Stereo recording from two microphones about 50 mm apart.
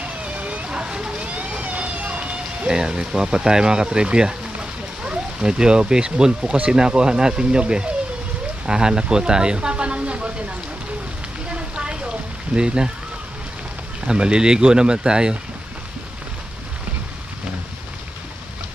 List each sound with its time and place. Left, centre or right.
0.0 s speech: right
6.4 s speech: right
6.7 s speech: centre
11.5 s a sound: centre
12.5 s speech: centre
14.0 s speech: centre